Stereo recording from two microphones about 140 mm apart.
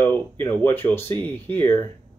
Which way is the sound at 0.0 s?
15° left (ahead or behind).